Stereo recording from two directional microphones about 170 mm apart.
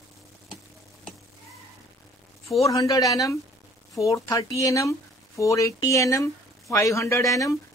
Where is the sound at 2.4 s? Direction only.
20° left (ahead or behind).